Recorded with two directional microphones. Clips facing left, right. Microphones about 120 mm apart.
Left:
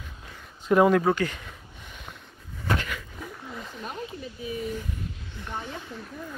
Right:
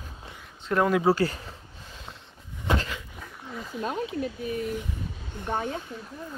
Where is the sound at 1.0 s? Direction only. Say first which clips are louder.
Right 2 dB; 35° right (ahead or behind).